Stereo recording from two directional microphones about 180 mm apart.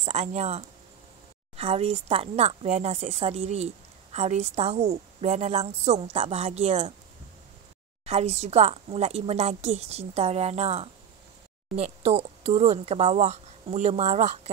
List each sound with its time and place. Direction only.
0.0 s speech: 35° right (ahead or behind)
8.0 s speech: 35° right (ahead or behind)